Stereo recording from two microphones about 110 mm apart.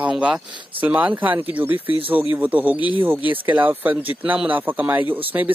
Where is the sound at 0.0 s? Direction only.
5° right (ahead or behind).